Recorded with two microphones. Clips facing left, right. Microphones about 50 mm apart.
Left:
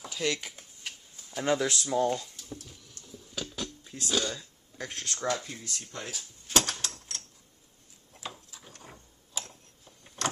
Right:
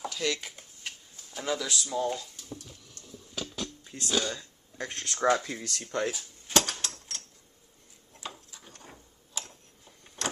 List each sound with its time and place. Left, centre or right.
0.1 s a sound: centre
1.4 s speech: left
1.9 s a sound: centre
5.4 s speech: right
6.5 s mechanisms: centre
8.2 s ratchet: centre
10.2 s vehicle: centre